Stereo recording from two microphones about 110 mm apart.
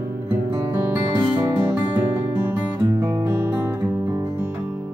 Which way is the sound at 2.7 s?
30° right (ahead or behind).